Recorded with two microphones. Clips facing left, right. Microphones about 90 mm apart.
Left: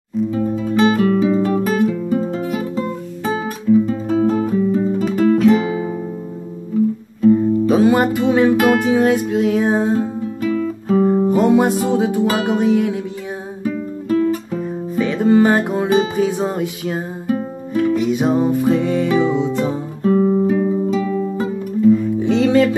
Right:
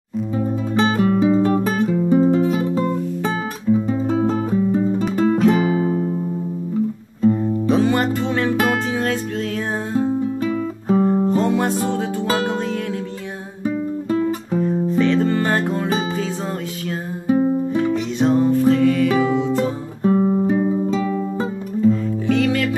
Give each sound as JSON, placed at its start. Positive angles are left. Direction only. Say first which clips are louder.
{"t": 0.7, "sound": "music", "louder": "left 3 dB", "side_deg": -25}
{"t": 3.7, "sound": "guitar", "louder": "left 4 dB", "side_deg": -20}
{"t": 4.3, "sound": "music", "louder": "left 2 dB", "side_deg": -25}
{"t": 5.1, "sound": "guitar", "louder": "left 4 dB", "side_deg": -20}
{"t": 7.2, "sound": "music", "louder": "left 4 dB", "side_deg": 5}
{"t": 9.9, "sound": "music", "louder": "right 1 dB", "side_deg": -15}
{"t": 11.2, "sound": "music", "louder": "left 5 dB", "side_deg": 15}
{"t": 13.7, "sound": "guitar", "louder": "even", "side_deg": -20}
{"t": 14.6, "sound": "music", "louder": "right 3 dB", "side_deg": 10}
{"t": 17.3, "sound": "music", "louder": "right 5 dB", "side_deg": -20}
{"t": 17.9, "sound": "music", "louder": "left 1 dB", "side_deg": 10}
{"t": 20.0, "sound": "guitar", "louder": "left 2 dB", "side_deg": -20}
{"t": 21.8, "sound": "music", "louder": "left 4 dB", "side_deg": 10}